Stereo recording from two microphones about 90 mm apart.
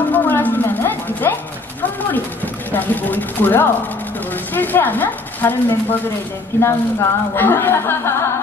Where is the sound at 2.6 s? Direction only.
20° left (ahead or behind).